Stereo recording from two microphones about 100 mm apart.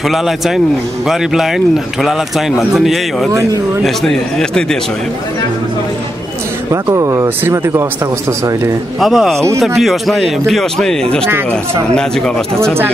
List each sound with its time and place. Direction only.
0.1 s speech: 5° right (ahead or behind)
3.3 s speech: 30° right (ahead or behind)
3.8 s speech: 5° left (ahead or behind)
6.7 s speech: 35° right (ahead or behind)
9.0 s speech: centre (ahead or behind)
11.2 s speech: 25° right (ahead or behind)
11.9 s speech: 5° left (ahead or behind)